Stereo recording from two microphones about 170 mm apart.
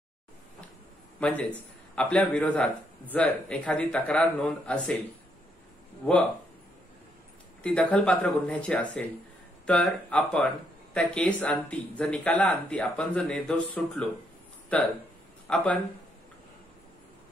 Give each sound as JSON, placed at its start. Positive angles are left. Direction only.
{"t": 1.2, "sound": "speech", "side_deg": 5}
{"t": 7.6, "sound": "speech", "side_deg": 5}